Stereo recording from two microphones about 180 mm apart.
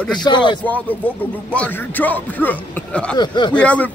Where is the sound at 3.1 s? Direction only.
25° left (ahead or behind).